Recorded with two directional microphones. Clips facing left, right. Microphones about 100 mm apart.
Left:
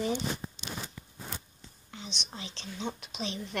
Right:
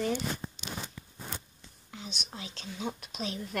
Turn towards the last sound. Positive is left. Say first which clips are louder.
# even
turn(degrees=-5)  # may be behind; listen again after turning